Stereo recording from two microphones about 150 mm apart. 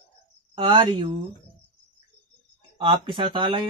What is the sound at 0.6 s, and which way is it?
Speech, 30° right (ahead or behind).